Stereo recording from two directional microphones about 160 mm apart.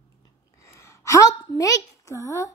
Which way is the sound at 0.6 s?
15° left (ahead or behind).